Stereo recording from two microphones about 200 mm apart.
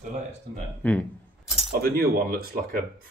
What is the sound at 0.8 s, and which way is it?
Speech, 10° left (ahead or behind).